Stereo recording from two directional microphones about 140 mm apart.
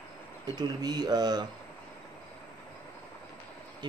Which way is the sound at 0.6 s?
30° right (ahead or behind).